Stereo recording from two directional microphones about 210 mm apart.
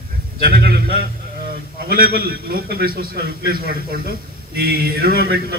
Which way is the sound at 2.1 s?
45° right (ahead or behind).